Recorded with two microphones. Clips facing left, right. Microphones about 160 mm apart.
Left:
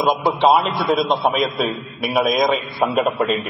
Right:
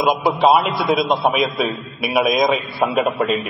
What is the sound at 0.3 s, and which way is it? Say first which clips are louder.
A man's voice: right 1 dB; centre (ahead or behind).